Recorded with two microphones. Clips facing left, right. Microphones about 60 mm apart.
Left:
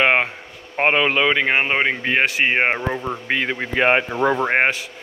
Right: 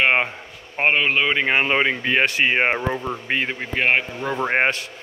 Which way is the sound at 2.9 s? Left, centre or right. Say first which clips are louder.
Left 1 dB; centre.